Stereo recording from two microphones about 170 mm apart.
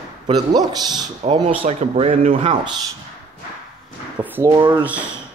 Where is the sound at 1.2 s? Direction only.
40° right (ahead or behind).